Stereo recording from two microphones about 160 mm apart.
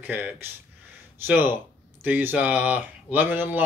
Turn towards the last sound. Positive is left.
turn(degrees=-10)  # may be behind; listen again after turning